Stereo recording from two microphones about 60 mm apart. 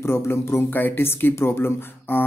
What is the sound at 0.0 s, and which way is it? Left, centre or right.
Speech, left.